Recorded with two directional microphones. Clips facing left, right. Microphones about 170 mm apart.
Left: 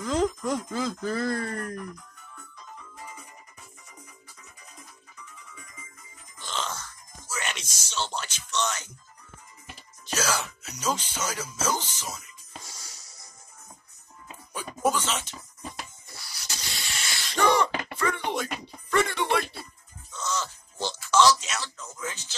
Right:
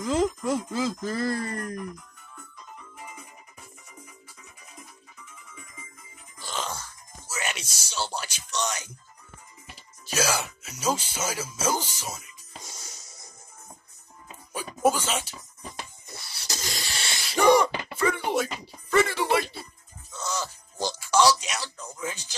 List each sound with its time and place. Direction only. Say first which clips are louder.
0.0 s speech: right 1 dB; 5° right (ahead or behind)
6.4 s music: even; 10° right (ahead or behind)
10.1 s speech: right 2 dB; 10° right (ahead or behind)
12.6 s music: right 3 dB; 20° right (ahead or behind)
14.5 s a sound: right 3 dB; 10° right (ahead or behind)
15.0 s speech: even; 10° right (ahead or behind)
16.1 s music: right 2 dB; 25° right (ahead or behind)
16.4 s a sound: right 5 dB; 40° right (ahead or behind)
17.2 s speech: right 4 dB; 10° right (ahead or behind)
20.1 s music: even; 10° right (ahead or behind)